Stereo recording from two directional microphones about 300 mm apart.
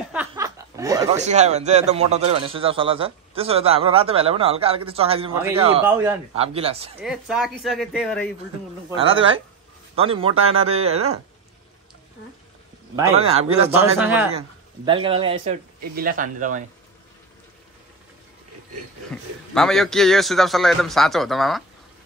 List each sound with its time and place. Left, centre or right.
0.1 s chuckle: centre
1.1 s a man's voice: right
6.3 s a man's voice: centre
7.0 s a man's voice: centre
8.9 s a man's voice: centre
12.9 s a man's voice: centre
13.9 s a man's voice: centre
14.9 s a man's voice: centre
19.5 s a man's voice: centre